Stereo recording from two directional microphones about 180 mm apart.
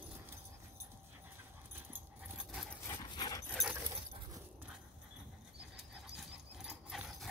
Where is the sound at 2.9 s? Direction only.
20° left (ahead or behind).